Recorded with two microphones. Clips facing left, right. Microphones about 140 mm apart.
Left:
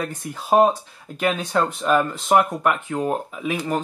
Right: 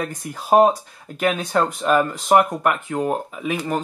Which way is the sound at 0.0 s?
Centre (ahead or behind).